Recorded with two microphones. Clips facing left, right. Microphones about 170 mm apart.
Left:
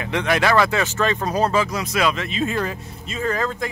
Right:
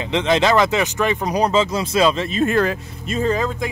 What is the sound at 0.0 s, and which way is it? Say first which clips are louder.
Speech: right 3 dB; 20° right (ahead or behind).